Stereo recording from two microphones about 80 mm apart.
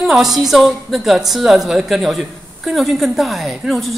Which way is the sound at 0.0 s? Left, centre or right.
Centre.